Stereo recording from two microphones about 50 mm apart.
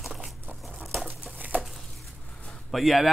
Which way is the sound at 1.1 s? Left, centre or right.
Right.